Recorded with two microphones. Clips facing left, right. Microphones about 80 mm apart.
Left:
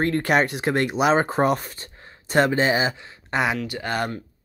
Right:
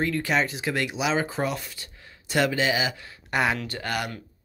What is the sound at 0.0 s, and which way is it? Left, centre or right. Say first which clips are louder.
Speech: left 4 dB; left.